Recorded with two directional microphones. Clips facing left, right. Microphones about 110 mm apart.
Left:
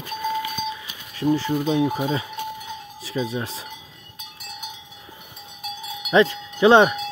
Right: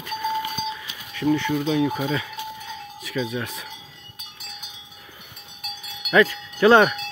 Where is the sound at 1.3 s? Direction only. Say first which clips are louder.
Even; 35° left (ahead or behind).